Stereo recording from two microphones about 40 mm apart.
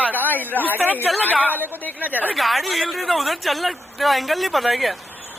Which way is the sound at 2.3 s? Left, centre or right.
Centre.